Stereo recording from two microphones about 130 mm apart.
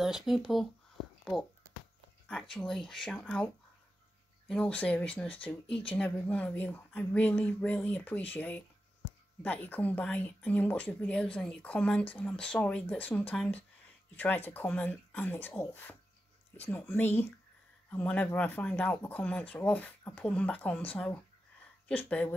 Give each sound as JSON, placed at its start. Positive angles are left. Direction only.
{"t": 0.0, "sound": "speech", "side_deg": 0}
{"t": 2.2, "sound": "speech", "side_deg": 5}
{"t": 4.5, "sound": "speech", "side_deg": 10}